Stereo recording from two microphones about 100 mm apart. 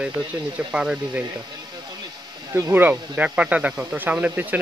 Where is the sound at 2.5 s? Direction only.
30° right (ahead or behind).